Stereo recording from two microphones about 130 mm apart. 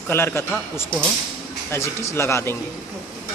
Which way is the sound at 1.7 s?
20° left (ahead or behind).